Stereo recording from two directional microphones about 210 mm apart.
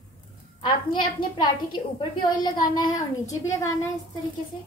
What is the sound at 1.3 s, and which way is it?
A woman's voice, 20° left (ahead or behind).